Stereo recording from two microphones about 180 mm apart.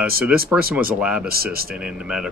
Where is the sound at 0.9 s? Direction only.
5° right (ahead or behind).